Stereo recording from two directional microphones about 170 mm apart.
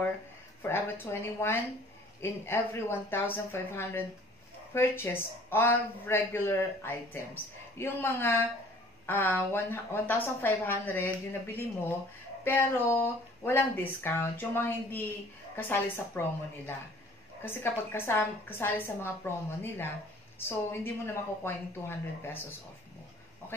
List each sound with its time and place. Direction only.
0.6 s a woman's voice: 15° left (ahead or behind)